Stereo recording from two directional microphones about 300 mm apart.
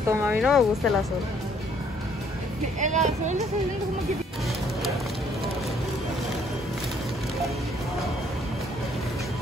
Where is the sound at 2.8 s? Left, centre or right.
Right.